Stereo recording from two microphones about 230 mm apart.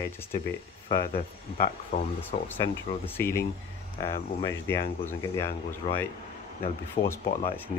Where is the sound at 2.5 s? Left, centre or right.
Centre.